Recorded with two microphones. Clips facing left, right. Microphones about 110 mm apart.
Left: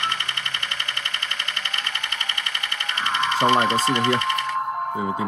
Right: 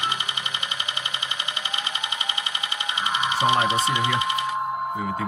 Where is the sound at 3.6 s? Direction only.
15° right (ahead or behind).